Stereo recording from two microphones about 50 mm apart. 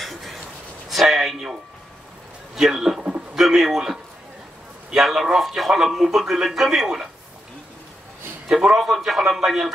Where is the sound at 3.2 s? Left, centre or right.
Centre.